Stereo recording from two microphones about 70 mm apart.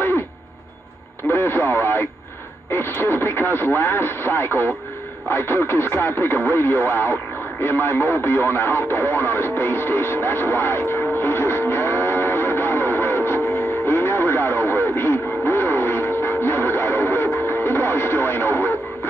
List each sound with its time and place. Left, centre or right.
1.3 s radio: left
2.7 s speech: left
7.6 s radio: left